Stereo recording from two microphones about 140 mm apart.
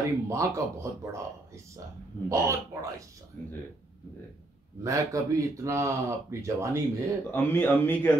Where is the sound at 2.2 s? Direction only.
20° right (ahead or behind).